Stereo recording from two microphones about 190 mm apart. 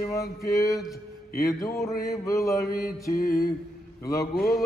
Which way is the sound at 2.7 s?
50° left (ahead or behind).